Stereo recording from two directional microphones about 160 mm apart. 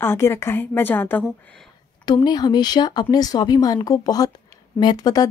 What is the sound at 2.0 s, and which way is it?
A woman's voice, 25° left (ahead or behind).